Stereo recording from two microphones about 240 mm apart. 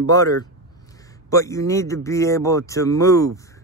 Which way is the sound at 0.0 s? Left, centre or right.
Centre.